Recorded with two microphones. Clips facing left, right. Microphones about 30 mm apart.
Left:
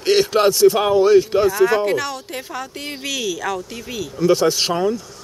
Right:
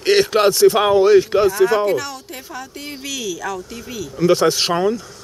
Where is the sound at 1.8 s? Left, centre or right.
Centre.